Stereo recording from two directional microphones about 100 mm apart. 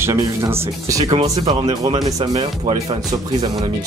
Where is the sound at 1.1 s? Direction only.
70° right (ahead or behind).